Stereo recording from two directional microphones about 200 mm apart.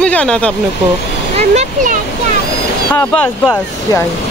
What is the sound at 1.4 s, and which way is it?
Speech, 35° right (ahead or behind).